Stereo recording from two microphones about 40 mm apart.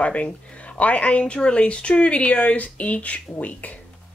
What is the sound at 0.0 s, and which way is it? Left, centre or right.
A woman's voice, left.